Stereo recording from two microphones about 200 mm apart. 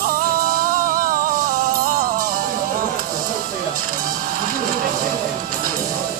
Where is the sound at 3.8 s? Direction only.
45° right (ahead or behind).